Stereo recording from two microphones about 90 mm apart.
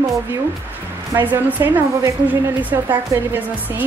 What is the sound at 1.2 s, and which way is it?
A woman's voice, 20° right (ahead or behind).